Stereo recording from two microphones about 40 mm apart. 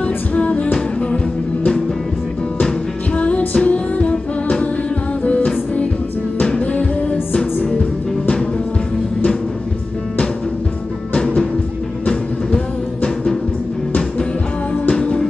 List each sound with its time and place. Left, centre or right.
0.0 s music: left
3.2 s music: left
13.0 s music: centre
15.0 s music: centre